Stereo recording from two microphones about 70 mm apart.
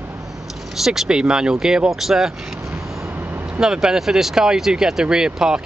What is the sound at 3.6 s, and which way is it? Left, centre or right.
Speech, centre.